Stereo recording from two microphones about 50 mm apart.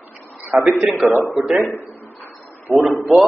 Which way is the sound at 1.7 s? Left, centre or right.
Left.